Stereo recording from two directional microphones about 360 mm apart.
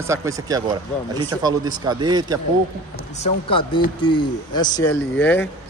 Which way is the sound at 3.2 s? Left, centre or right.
Centre.